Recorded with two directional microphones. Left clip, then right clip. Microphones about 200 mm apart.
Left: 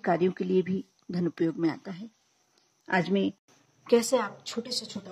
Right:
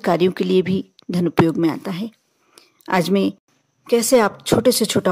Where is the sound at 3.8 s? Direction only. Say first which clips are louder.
Right 9 dB; 30° right (ahead or behind).